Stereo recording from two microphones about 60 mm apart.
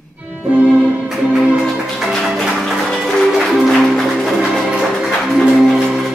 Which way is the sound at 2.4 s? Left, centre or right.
Centre.